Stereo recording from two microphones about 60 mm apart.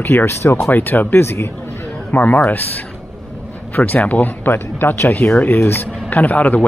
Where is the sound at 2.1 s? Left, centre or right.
Left.